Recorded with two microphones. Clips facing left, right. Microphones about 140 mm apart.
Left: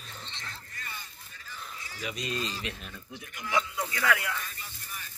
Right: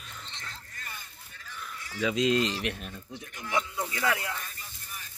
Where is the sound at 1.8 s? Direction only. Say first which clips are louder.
Right 11 dB; 70° right (ahead or behind).